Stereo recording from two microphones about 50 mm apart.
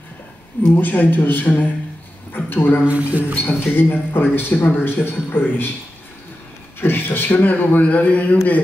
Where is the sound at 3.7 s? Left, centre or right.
Left.